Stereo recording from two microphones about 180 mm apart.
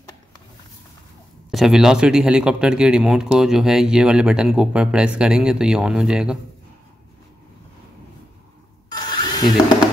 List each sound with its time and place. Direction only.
1.5 s speech: centre (ahead or behind)
8.8 s wood: 25° left (ahead or behind)